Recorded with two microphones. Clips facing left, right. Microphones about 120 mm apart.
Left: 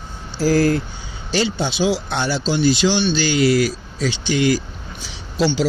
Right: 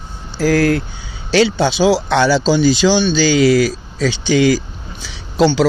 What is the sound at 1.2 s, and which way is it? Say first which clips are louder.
Speech: right 7 dB; 85° right.